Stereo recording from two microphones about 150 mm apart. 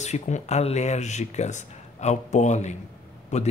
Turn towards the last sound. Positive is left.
turn(degrees=50)  # may be behind; listen again after turning